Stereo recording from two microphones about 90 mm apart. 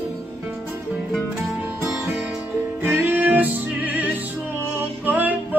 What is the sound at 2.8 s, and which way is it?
Music, 25° right (ahead or behind).